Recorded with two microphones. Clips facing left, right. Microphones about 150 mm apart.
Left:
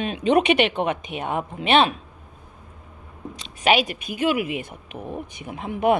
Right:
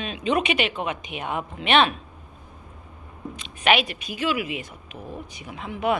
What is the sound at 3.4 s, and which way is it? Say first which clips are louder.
Speech: left 2 dB; 40° left (ahead or behind).